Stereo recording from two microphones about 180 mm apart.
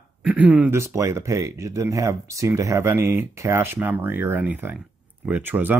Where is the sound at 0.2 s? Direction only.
5° right (ahead or behind).